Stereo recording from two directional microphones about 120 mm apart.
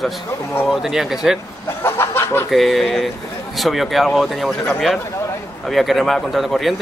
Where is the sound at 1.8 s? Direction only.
20° left (ahead or behind).